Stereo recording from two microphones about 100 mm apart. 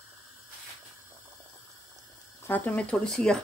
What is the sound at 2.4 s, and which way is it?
Speech, 15° left (ahead or behind).